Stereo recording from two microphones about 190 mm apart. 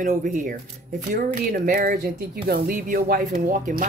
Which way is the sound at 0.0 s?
45° right (ahead or behind).